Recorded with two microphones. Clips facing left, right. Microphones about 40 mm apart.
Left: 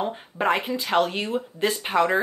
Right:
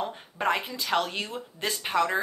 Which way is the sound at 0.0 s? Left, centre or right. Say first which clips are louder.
Left 4 dB; left.